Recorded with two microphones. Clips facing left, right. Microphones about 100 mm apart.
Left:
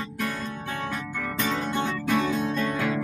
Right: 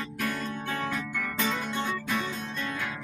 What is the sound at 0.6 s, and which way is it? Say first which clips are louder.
Music: even; 20° left (ahead or behind).